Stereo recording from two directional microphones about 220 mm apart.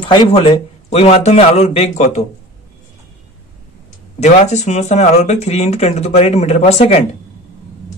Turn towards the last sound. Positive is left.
turn(degrees=30)  # may be behind; listen again after turning